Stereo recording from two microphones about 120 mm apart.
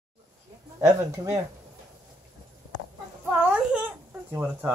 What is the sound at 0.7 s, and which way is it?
Speech, 20° right (ahead or behind).